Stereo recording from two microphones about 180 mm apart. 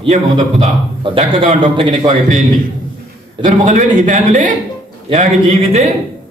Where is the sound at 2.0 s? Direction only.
45° right (ahead or behind).